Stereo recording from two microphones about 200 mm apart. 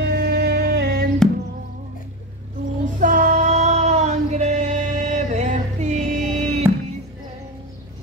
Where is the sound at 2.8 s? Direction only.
40° right (ahead or behind).